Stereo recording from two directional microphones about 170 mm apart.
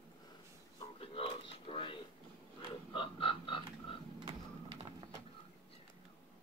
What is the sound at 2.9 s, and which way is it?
Frog, 30° left (ahead or behind).